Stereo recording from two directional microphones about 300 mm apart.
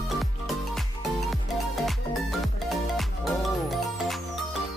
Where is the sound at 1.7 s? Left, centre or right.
Centre.